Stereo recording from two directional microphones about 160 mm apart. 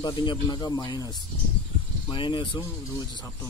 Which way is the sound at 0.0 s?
30° left (ahead or behind).